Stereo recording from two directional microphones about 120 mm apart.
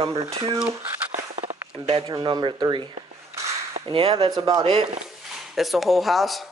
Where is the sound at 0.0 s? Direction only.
50° right (ahead or behind).